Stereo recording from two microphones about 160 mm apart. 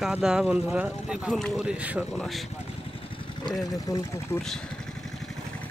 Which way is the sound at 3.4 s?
20° left (ahead or behind).